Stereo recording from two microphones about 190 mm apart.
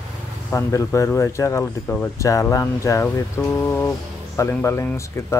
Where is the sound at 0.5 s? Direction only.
15° left (ahead or behind).